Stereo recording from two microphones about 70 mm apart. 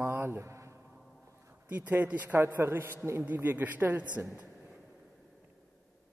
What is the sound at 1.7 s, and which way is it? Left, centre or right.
Speech, right.